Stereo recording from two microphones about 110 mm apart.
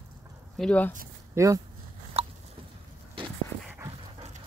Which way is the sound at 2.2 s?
65° right (ahead or behind).